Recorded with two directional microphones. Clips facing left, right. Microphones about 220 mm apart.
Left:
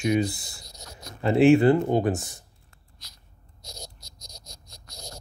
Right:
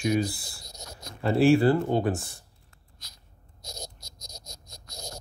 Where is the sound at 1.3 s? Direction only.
20° left (ahead or behind).